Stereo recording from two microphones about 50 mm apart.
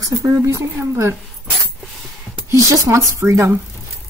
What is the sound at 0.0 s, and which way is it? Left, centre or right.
Speech, right.